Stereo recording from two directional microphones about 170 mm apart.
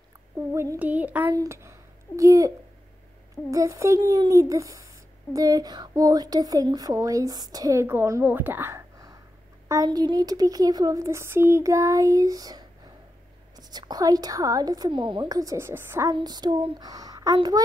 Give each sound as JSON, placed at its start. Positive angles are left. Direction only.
{"t": 0.5, "sound": "a child's voice", "side_deg": -15}